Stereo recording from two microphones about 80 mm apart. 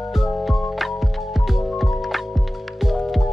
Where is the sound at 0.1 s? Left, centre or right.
Centre.